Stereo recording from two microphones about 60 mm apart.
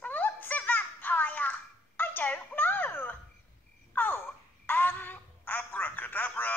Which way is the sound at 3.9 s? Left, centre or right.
Left.